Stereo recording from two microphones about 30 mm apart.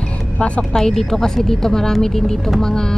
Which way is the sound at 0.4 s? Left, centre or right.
Left.